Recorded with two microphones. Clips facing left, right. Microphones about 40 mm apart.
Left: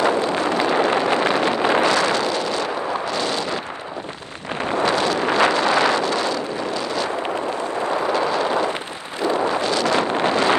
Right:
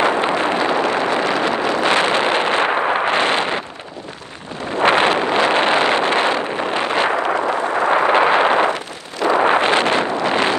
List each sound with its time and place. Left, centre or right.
0.0 s artillery fire: right
0.9 s a sound: right
1.6 s wind noise: left
1.9 s wind noise: right
4.7 s wind noise: right